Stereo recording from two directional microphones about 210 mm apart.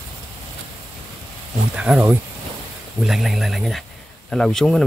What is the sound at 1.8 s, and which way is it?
Speech, 5° right (ahead or behind).